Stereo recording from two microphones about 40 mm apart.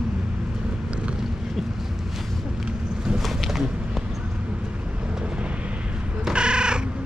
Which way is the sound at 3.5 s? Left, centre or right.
Centre.